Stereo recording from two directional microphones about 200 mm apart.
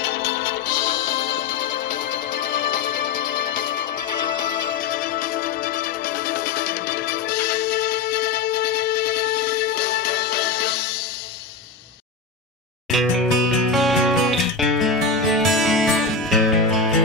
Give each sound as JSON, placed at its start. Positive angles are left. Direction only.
{"t": 2.7, "sound": "music", "side_deg": 40}
{"t": 12.9, "sound": "music", "side_deg": 0}